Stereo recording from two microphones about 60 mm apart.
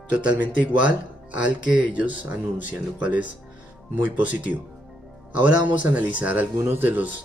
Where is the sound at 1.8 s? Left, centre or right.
Right.